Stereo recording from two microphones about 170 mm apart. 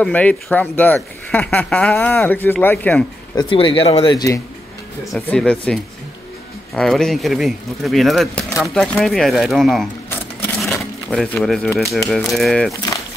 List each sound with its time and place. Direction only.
0.0 s speech: 10° left (ahead or behind)
3.3 s speech: 30° left (ahead or behind)
5.1 s speech: 5° left (ahead or behind)